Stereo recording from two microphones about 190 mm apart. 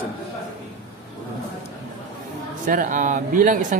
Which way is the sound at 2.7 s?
45° right (ahead or behind).